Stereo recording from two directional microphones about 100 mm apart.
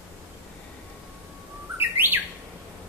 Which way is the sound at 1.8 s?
20° right (ahead or behind).